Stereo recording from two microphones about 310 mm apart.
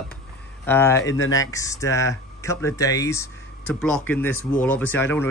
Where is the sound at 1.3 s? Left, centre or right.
Centre.